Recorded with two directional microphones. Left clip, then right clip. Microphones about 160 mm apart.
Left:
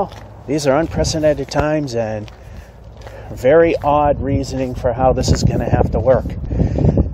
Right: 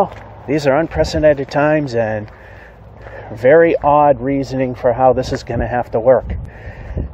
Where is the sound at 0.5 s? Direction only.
5° left (ahead or behind).